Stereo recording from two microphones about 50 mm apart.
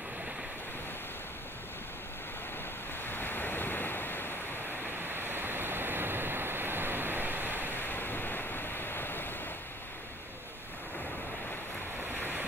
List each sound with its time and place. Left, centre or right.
3.1 s waves: left
5.1 s waves: right
7.7 s waves: left
12.2 s waves: right